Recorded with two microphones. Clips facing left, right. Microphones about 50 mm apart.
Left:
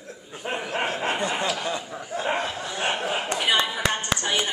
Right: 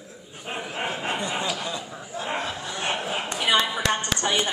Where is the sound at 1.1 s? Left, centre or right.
Left.